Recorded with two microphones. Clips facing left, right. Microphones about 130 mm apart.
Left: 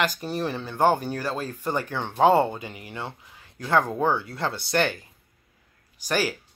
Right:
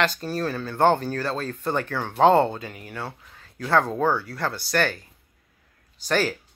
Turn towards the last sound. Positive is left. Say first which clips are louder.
# right 2 dB
turn(degrees=10)  # may be behind; listen again after turning